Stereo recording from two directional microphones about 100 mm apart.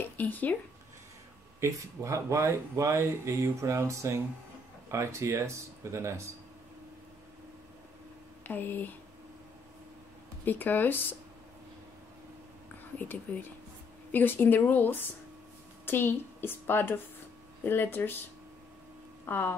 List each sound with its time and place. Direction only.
0.2 s speech: 15° left (ahead or behind)
1.6 s speech: 30° right (ahead or behind)
8.5 s speech: 20° left (ahead or behind)
10.4 s speech: 20° left (ahead or behind)
13.3 s a woman's voice: 15° left (ahead or behind)
19.2 s speech: 20° left (ahead or behind)